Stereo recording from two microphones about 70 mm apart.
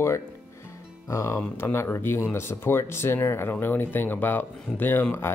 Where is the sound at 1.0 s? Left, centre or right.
Left.